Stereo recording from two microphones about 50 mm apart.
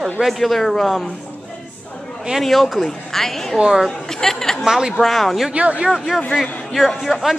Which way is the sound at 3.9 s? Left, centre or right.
Centre.